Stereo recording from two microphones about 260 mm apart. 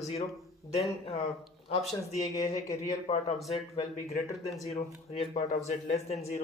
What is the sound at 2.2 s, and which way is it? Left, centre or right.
Speech, centre.